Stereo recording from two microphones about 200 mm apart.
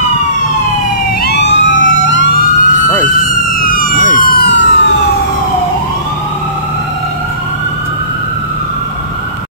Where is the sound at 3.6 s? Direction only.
45° left (ahead or behind); by 4.7 s 60° left (ahead or behind).